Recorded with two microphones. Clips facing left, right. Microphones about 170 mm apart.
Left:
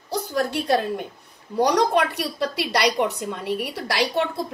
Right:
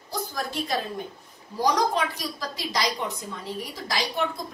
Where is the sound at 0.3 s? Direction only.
70° left (ahead or behind).